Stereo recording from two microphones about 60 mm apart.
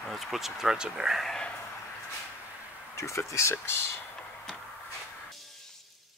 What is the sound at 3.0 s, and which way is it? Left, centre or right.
Speech, left.